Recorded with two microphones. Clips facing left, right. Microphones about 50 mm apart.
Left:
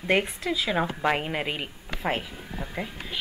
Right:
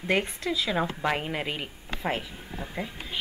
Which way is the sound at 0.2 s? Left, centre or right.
Centre.